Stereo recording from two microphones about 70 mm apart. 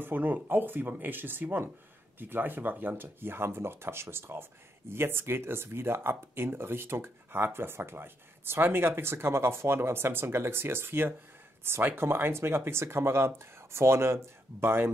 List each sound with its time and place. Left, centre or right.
0.0 s speech: right